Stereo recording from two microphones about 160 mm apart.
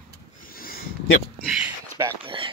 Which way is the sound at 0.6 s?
65° left (ahead or behind).